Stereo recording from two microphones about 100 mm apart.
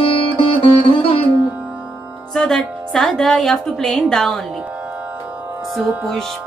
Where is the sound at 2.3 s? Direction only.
5° left (ahead or behind).